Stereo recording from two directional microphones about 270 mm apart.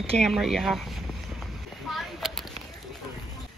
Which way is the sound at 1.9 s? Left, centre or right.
Centre.